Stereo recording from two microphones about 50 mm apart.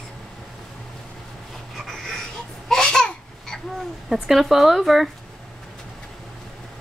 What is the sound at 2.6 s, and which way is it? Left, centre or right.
Babbling, centre.